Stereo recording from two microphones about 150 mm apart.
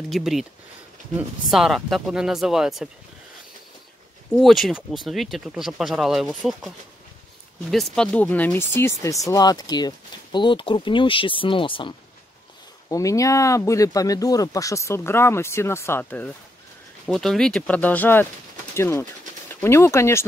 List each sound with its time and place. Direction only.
0.1 s speech: centre (ahead or behind)
1.5 s speech: centre (ahead or behind)
4.3 s speech: centre (ahead or behind)
7.7 s speech: 5° left (ahead or behind); by 11.9 s 35° left (ahead or behind)
12.8 s speech: 20° left (ahead or behind)